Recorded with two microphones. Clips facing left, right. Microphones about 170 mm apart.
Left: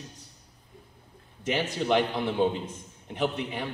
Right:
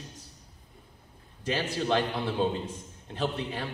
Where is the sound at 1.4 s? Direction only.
20° left (ahead or behind).